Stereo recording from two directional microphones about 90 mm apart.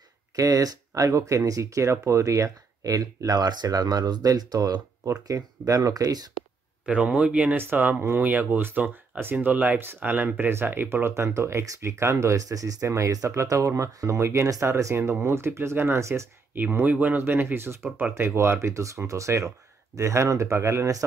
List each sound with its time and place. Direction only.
0.4 s speech: 40° right (ahead or behind)
6.9 s speech: 15° right (ahead or behind); by 16.3 s 30° right (ahead or behind)
16.5 s speech: 20° right (ahead or behind)
17.8 s speech: 10° right (ahead or behind)
18.1 s speech: 30° right (ahead or behind)